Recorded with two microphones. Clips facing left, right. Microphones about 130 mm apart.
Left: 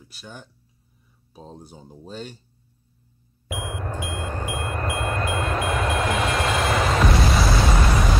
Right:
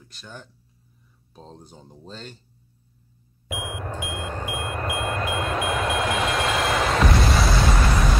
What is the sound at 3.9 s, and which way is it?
Vehicle, 20° right (ahead or behind).